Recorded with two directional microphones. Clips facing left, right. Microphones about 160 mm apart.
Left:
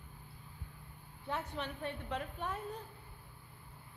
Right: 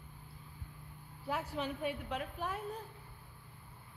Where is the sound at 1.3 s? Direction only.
10° right (ahead or behind).